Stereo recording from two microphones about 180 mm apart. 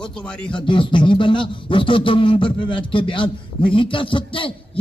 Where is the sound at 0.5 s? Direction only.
25° left (ahead or behind).